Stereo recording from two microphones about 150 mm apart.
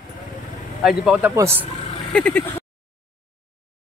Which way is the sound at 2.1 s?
10° left (ahead or behind).